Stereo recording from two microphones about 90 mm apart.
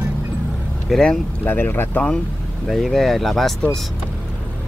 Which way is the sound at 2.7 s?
Centre (ahead or behind).